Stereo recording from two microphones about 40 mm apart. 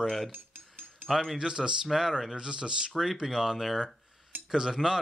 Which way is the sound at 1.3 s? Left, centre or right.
Centre.